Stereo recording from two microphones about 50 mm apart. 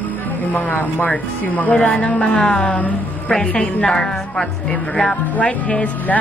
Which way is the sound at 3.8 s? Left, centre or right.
Centre.